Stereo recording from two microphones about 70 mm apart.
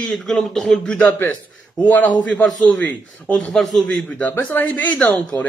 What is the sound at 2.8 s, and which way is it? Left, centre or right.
Speech, left.